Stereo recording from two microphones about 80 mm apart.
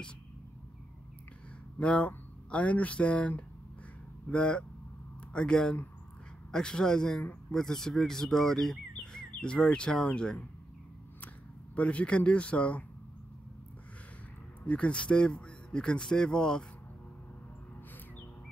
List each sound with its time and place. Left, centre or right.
1.8 s speech: centre
11.7 s speech: centre
14.7 s speech: centre